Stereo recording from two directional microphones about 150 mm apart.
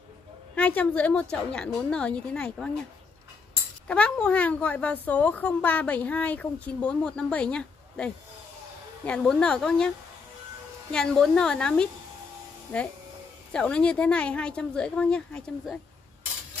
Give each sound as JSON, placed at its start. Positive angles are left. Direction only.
{"t": 0.6, "sound": "a woman's voice", "side_deg": 10}
{"t": 3.8, "sound": "a woman's voice", "side_deg": 10}